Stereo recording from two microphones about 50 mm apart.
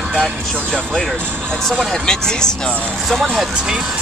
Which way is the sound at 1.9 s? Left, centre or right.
Centre.